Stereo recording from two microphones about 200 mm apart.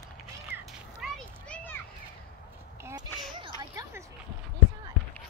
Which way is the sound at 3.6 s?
20° right (ahead or behind).